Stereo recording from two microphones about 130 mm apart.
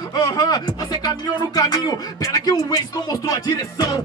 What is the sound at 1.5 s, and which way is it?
Speech, 30° left (ahead or behind).